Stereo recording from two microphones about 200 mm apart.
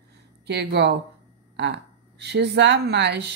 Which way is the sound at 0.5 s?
60° right (ahead or behind).